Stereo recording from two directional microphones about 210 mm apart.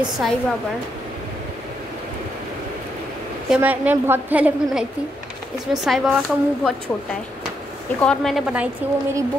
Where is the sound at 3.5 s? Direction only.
10° right (ahead or behind).